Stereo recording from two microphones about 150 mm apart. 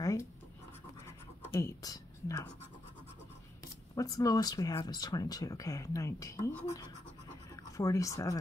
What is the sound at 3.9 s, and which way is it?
Speech, 25° left (ahead or behind).